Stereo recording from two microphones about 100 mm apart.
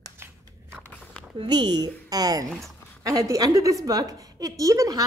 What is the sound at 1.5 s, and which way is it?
A woman's voice, 45° right (ahead or behind).